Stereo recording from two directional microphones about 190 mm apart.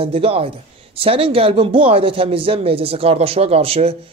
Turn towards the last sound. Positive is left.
turn(degrees=-30)  # may be behind; listen again after turning